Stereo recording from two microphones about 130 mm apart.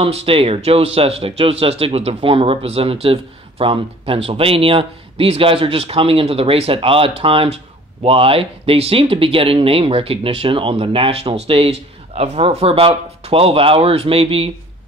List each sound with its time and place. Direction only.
0.0 s speech: 45° right (ahead or behind)